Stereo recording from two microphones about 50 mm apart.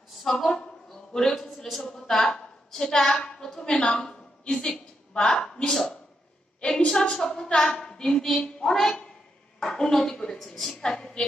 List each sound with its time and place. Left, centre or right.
0.2 s a woman's voice: centre
1.1 s a sound: centre
2.2 s a woman's voice: centre
10.8 s a woman's voice: centre